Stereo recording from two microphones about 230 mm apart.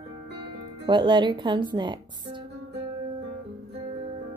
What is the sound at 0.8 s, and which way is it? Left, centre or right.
Speech, right.